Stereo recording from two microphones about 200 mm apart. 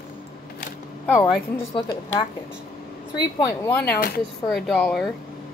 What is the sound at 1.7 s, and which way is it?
Speech, 20° left (ahead or behind).